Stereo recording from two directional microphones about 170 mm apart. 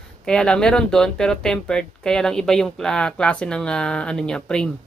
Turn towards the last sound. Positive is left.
turn(degrees=5)  # may be behind; listen again after turning